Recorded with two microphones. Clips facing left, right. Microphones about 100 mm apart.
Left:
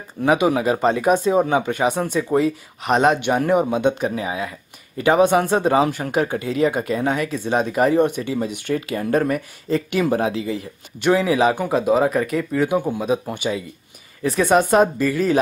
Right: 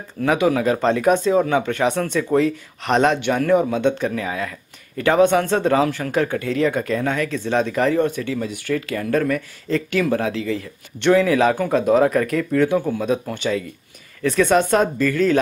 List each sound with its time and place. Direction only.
0.2 s speech: 15° left (ahead or behind)